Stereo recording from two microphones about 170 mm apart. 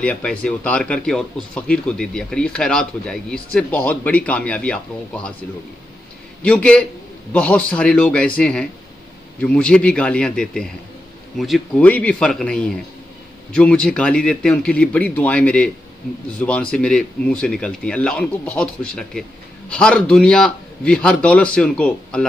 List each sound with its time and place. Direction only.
0.0 s speech: 5° left (ahead or behind)
6.4 s a man's voice: 5° left (ahead or behind)